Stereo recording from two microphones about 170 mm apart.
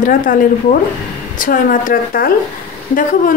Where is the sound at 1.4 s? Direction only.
55° left (ahead or behind).